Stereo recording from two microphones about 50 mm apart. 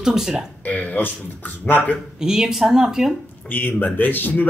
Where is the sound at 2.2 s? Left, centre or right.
Centre.